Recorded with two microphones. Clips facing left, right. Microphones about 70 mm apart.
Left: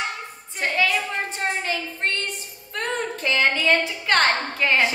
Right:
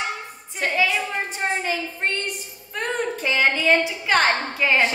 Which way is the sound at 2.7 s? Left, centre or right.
Centre.